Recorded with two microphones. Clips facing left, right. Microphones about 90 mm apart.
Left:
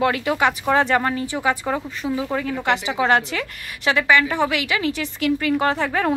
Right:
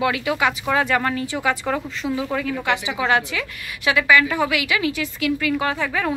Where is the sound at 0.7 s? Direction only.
25° left (ahead or behind).